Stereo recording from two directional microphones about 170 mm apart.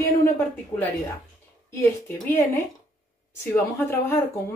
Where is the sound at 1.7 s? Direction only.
15° left (ahead or behind).